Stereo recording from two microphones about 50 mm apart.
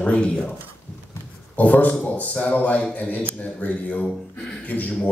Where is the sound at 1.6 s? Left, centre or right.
Left.